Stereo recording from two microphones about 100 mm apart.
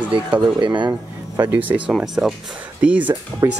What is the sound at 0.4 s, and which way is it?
Speech, 50° right (ahead or behind).